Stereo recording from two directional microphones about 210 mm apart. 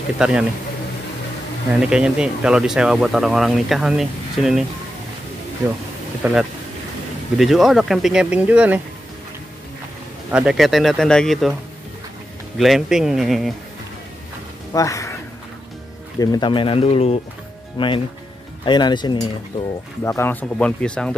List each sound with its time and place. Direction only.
0.2 s speech: 5° right (ahead or behind)
1.7 s speech: 5° right (ahead or behind)
6.2 s speech: 10° right (ahead or behind)
7.3 s speech: centre (ahead or behind)
10.3 s speech: 5° right (ahead or behind)
12.5 s speech: centre (ahead or behind)
14.7 s speech: 15° left (ahead or behind)
16.2 s speech: 20° left (ahead or behind)